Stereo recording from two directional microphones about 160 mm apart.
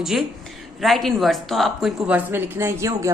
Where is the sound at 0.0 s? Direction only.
Centre (ahead or behind).